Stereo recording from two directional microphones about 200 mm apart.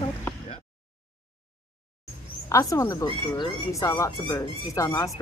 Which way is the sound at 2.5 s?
15° left (ahead or behind).